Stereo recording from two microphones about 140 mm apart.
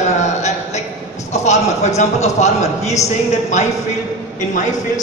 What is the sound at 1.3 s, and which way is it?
A man's voice, 55° left (ahead or behind).